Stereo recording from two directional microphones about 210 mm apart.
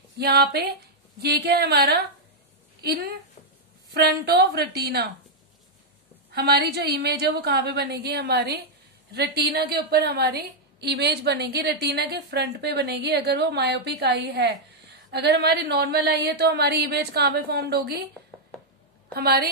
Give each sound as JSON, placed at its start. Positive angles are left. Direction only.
{"t": 0.2, "sound": "a woman's voice", "side_deg": -50}
{"t": 6.3, "sound": "a woman's voice", "side_deg": -50}
{"t": 19.1, "sound": "a woman's voice", "side_deg": -45}